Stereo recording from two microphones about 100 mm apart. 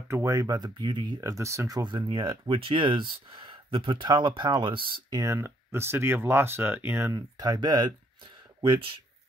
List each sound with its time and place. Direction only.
0.1 s speech: 35° right (ahead or behind); by 1.3 s 50° right (ahead or behind)
1.3 s speech: 30° right (ahead or behind)
1.8 s speech: 55° right (ahead or behind)
5.1 s speech: 30° right (ahead or behind)
7.2 s speech: 40° right (ahead or behind)
8.5 s speech: 55° right (ahead or behind)